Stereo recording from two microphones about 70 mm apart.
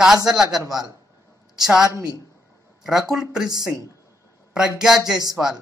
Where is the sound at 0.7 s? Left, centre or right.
Right.